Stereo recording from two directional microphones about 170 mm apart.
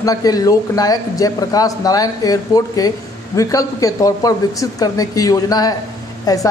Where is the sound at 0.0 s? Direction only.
20° left (ahead or behind).